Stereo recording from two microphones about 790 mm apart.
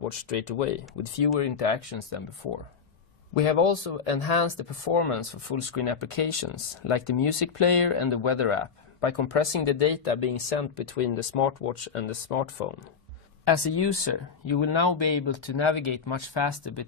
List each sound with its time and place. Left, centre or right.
0.2 s speech: left
3.3 s speech: left
11.7 s speech: left
13.5 s speech: left